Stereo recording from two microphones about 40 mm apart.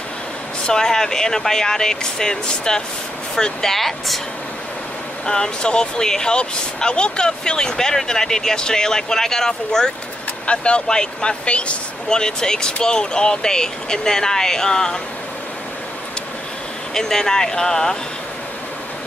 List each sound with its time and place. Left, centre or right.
0.7 s speech: centre
3.7 s speech: centre
5.2 s speech: centre
10.4 s speech: left
12.2 s speech: centre
16.9 s speech: centre